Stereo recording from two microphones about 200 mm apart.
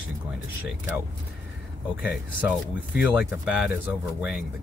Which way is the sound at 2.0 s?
Centre (ahead or behind).